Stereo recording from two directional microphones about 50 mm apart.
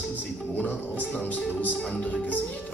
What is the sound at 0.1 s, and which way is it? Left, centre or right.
Music, left.